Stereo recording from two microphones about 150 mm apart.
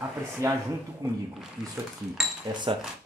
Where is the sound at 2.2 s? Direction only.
Centre (ahead or behind).